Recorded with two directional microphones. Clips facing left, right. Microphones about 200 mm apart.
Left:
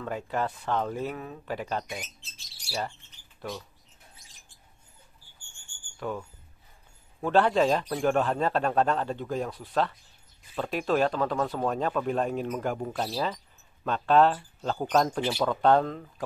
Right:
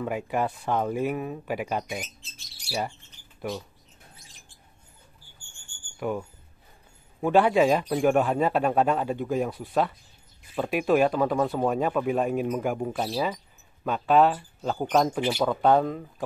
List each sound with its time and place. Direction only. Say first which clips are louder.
0.0 s speech: right 3 dB; 10° right (ahead or behind)
3.3 s speech: right 4 dB; 10° right (ahead or behind)
5.9 s speech: right 4 dB; 10° right (ahead or behind)
15.1 s speech: right 2 dB; 20° right (ahead or behind)